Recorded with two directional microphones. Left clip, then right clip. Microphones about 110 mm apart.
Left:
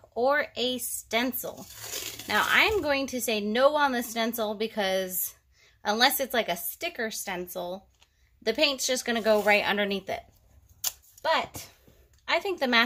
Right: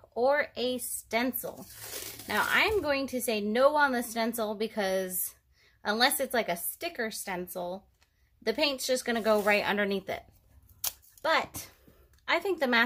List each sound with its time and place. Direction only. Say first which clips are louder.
0.1 s a woman's voice: left 1 dB; 10° right (ahead or behind)
1.0 s a woman's voice: left 2 dB; 15° left (ahead or behind)
1.6 s crumpling: left 5 dB; 10° left (ahead or behind)
2.8 s a woman's voice: left 2 dB; 20° left (ahead or behind); by 10.2 s 5° right (ahead or behind)
10.8 s a sound: left 2 dB; 30° right (ahead or behind)
12.3 s a woman's voice: left 1 dB; 10° right (ahead or behind)